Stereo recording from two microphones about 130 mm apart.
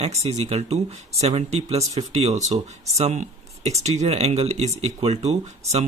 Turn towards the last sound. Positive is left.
turn(degrees=-55)  # may be behind; listen again after turning